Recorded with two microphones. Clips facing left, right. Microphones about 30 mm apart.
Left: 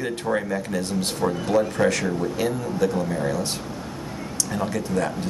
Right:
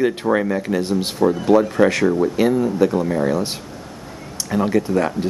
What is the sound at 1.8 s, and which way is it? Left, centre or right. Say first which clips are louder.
Speech: right 6 dB; centre.